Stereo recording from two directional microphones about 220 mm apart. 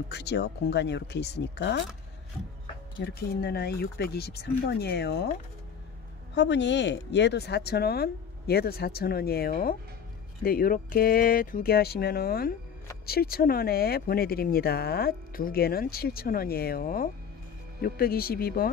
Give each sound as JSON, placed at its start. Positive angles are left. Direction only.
{"t": 0.1, "sound": "speech", "side_deg": 50}
{"t": 3.0, "sound": "speech", "side_deg": 45}
{"t": 6.3, "sound": "speech", "side_deg": 55}